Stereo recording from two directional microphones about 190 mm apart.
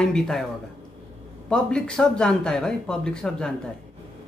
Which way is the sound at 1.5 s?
5° left (ahead or behind).